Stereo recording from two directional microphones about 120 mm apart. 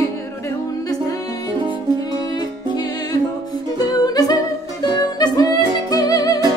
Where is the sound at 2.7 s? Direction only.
35° left (ahead or behind).